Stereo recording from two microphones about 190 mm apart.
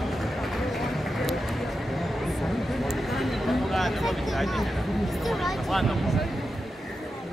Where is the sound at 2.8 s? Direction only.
Centre (ahead or behind).